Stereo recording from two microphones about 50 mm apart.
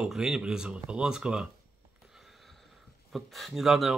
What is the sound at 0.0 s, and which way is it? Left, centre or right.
Speech, centre.